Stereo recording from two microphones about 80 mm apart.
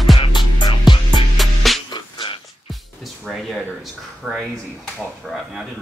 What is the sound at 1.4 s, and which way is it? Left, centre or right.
Music, centre.